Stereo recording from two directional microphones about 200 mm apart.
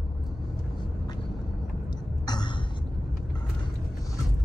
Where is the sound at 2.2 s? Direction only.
20° left (ahead or behind).